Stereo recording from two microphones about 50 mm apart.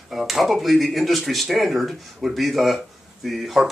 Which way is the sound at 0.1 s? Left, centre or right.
Centre.